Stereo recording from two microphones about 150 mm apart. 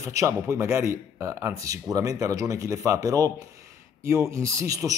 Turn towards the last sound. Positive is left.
turn(degrees=-20)  # may be behind; listen again after turning